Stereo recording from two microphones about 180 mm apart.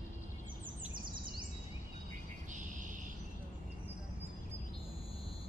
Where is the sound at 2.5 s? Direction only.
45° right (ahead or behind).